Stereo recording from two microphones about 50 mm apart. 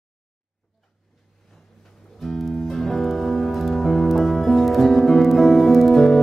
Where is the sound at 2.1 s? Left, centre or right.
Centre.